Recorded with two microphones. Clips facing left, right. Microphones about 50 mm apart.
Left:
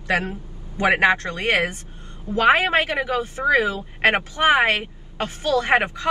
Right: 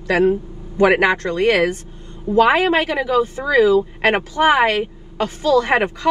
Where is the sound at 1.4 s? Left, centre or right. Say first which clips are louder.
Right 5 dB; left.